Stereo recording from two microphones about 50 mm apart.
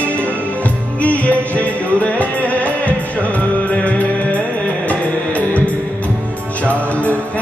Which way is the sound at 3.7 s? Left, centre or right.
Left.